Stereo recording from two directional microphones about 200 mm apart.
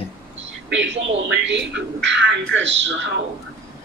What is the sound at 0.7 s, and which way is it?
A man's voice, 65° right (ahead or behind).